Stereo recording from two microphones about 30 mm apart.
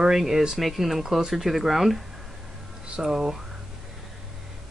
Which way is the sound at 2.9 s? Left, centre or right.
Centre.